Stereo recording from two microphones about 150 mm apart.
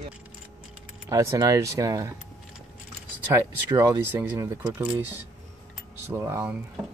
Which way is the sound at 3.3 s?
20° right (ahead or behind).